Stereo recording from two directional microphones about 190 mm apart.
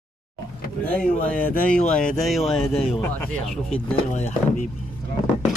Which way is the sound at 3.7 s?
35° left (ahead or behind).